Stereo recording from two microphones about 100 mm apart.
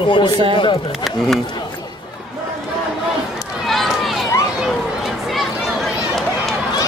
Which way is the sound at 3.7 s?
Centre (ahead or behind).